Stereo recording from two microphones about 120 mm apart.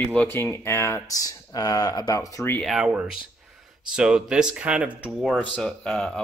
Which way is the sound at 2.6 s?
5° right (ahead or behind).